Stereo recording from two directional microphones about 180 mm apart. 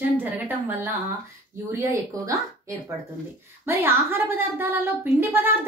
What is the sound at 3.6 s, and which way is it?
A woman's voice, 10° right (ahead or behind).